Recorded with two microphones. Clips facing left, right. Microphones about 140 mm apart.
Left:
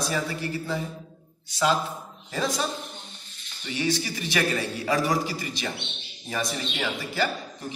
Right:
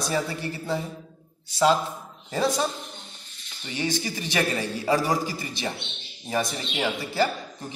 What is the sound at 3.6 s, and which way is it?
A man's voice, 25° right (ahead or behind).